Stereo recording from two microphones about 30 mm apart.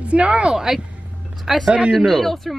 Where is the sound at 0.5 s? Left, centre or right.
Centre.